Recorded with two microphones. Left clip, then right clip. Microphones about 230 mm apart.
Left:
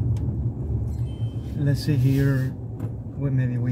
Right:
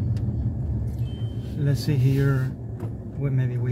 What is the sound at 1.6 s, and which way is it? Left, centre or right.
Speech, centre.